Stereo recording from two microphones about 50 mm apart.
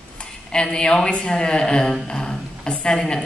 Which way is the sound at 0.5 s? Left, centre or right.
Centre.